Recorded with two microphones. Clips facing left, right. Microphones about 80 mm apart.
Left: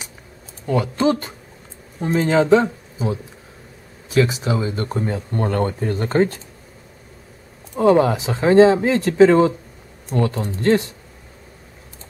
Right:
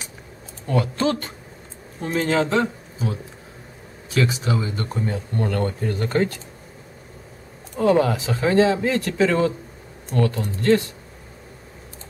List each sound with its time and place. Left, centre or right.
0.7 s speech: centre; by 6.4 s left
7.9 s speech: left